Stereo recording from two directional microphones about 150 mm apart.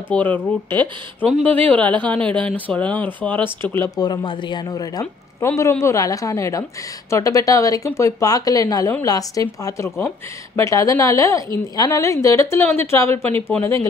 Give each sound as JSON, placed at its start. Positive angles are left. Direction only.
{"t": 0.1, "sound": "a woman's voice", "side_deg": 10}